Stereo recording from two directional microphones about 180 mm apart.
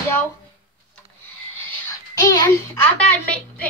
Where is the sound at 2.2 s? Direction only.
20° left (ahead or behind).